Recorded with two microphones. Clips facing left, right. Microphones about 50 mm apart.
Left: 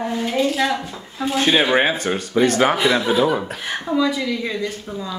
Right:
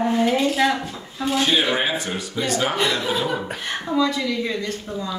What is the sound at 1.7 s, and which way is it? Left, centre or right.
Speech, left.